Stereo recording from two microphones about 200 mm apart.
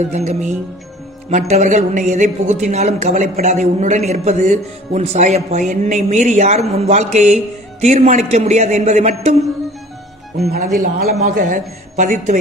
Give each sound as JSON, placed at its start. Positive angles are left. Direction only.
{"t": 0.1, "sound": "a woman's voice", "side_deg": -35}
{"t": 10.5, "sound": "a woman's voice", "side_deg": -40}